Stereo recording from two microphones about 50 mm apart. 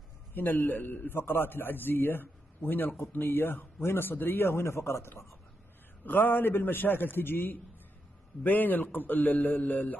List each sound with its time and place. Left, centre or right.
0.3 s a man's voice: left
6.0 s a man's voice: left